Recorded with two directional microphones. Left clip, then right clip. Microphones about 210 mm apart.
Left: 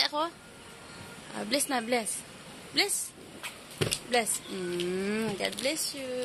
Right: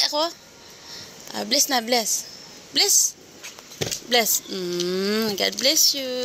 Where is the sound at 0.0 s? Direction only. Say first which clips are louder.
Right 7 dB; 20° right (ahead or behind).